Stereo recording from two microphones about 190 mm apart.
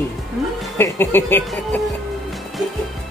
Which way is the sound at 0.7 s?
10° left (ahead or behind).